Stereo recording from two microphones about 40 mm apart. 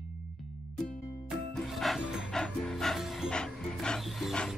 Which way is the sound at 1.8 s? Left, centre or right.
Centre.